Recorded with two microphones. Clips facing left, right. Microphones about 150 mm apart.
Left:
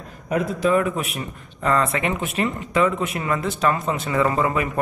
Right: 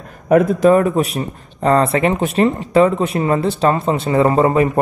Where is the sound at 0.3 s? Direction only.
50° right (ahead or behind).